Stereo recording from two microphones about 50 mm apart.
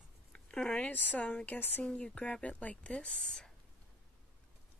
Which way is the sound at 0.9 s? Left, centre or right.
Left.